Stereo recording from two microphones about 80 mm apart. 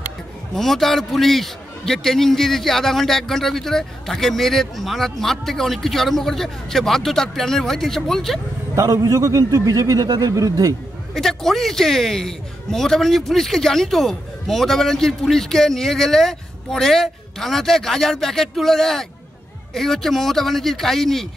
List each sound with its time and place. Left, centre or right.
0.6 s a man's voice: centre
8.7 s a man's voice: right
11.1 s a man's voice: centre